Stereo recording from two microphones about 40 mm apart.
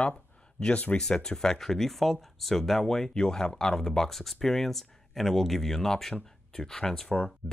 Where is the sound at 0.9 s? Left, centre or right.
Centre.